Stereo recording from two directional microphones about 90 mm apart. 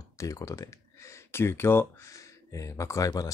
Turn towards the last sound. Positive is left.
turn(degrees=40)  # may be behind; listen again after turning